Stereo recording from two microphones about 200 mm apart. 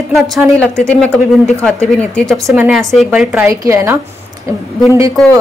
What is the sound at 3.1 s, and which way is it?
Speech, 10° right (ahead or behind).